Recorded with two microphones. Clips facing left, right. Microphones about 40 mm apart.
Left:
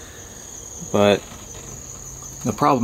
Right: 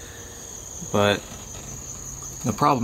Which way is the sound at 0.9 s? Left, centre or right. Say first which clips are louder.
Left 4 dB; centre.